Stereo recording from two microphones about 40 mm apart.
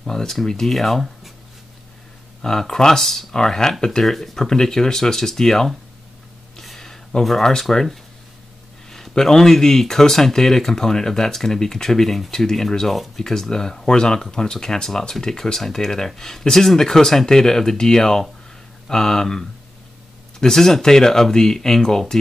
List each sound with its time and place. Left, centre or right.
0.0 s speech: centre
2.4 s speech: centre
6.8 s a sound: centre
7.7 s speech: centre